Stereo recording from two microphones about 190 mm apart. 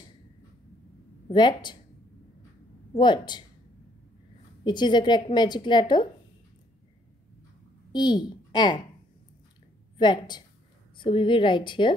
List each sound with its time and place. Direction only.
1.3 s a woman's voice: 25° left (ahead or behind)
3.0 s a woman's voice: 25° left (ahead or behind)
4.6 s a woman's voice: 25° left (ahead or behind)
7.9 s a woman's voice: 20° left (ahead or behind)
9.9 s a woman's voice: 25° left (ahead or behind)